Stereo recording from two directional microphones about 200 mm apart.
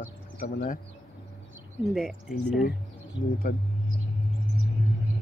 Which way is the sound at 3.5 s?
40° left (ahead or behind).